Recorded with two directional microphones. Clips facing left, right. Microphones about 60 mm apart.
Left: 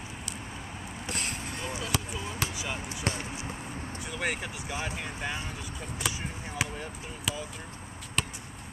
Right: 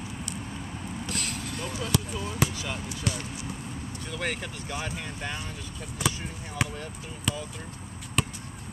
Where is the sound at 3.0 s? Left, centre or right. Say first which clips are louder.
Even; left.